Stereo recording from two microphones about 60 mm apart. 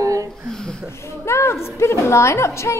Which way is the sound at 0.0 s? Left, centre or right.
Right.